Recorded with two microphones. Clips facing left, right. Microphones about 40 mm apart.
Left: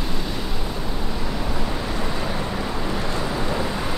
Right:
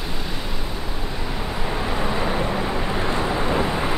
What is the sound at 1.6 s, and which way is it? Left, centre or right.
Vehicle, centre.